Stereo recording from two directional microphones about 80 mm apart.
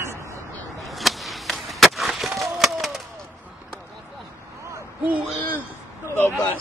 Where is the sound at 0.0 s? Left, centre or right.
Right.